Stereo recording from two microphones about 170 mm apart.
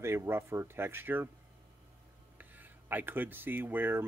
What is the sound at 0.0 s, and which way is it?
Speech, 15° right (ahead or behind).